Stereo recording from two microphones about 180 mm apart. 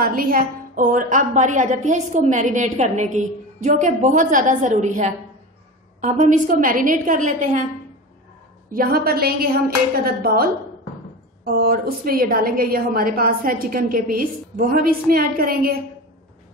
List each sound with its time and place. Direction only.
0.0 s a woman's voice: 50° right (ahead or behind)
8.7 s a woman's voice: 55° right (ahead or behind)